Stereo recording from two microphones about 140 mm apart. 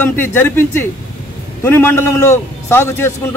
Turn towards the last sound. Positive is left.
turn(degrees=15)  # may be behind; listen again after turning